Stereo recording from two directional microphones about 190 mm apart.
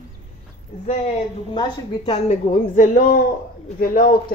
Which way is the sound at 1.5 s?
25° left (ahead or behind).